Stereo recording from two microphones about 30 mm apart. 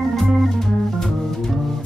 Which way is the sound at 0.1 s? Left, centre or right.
Centre.